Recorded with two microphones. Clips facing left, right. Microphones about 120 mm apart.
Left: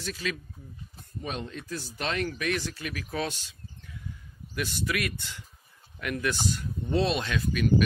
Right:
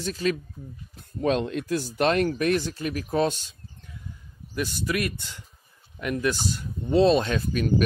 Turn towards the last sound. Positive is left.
turn(degrees=-35)  # may be behind; listen again after turning